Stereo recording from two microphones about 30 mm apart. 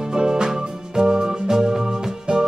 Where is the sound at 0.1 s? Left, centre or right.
Right.